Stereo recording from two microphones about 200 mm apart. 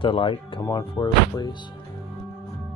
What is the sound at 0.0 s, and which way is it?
Speech, 25° left (ahead or behind).